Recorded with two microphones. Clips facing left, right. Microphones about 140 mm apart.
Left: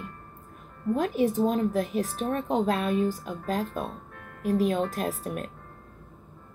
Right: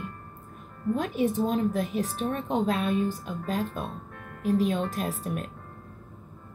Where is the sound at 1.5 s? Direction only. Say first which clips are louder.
Left 1 dB; 35° left (ahead or behind).